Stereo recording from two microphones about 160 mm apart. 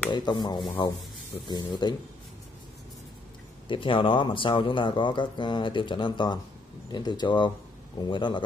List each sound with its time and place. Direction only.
0.1 s speech: 30° left (ahead or behind)
3.6 s speech: 30° left (ahead or behind)